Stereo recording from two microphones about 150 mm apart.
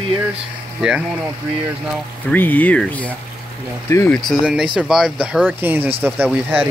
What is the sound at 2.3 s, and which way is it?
Speech, 10° left (ahead or behind).